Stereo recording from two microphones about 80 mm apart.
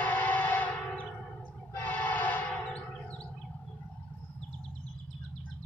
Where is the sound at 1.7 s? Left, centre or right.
Left.